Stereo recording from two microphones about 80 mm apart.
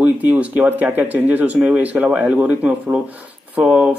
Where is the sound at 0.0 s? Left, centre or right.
Centre.